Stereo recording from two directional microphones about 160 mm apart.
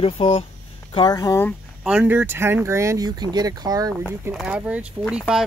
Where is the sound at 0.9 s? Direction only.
25° left (ahead or behind).